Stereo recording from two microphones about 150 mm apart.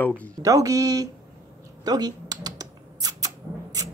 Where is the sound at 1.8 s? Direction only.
25° right (ahead or behind).